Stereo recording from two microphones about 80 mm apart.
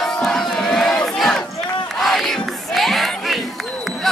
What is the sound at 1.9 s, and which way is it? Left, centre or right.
Battle cry, centre.